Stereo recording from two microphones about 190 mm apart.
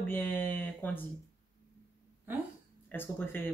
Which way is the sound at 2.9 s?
10° left (ahead or behind).